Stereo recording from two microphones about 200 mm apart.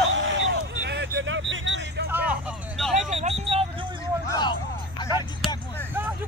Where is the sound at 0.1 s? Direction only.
70° right (ahead or behind).